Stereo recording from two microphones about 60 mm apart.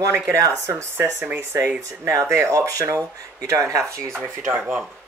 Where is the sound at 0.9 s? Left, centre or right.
Right.